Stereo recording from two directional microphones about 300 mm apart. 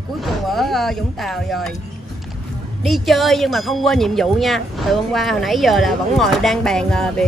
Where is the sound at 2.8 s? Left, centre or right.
Centre.